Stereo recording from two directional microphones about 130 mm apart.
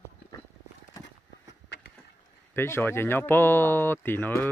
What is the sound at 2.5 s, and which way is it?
Speech, 20° left (ahead or behind).